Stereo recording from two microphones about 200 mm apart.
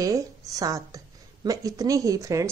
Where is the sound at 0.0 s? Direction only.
15° right (ahead or behind).